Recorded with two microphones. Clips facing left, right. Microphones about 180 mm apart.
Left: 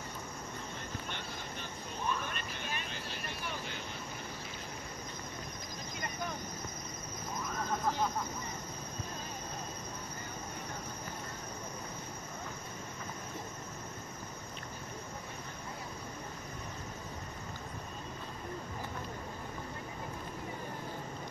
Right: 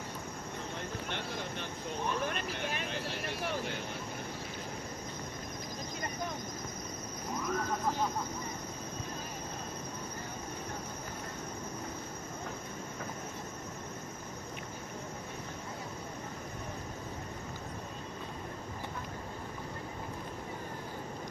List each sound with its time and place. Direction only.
1.1 s vehicle: 75° right (ahead or behind)